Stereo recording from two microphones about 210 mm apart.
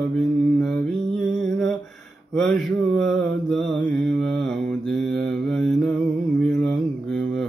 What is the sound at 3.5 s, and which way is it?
Mantra, 5° left (ahead or behind).